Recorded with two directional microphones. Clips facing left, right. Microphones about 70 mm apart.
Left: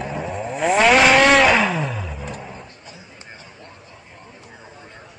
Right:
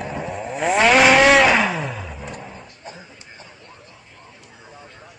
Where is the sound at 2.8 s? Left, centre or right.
Right.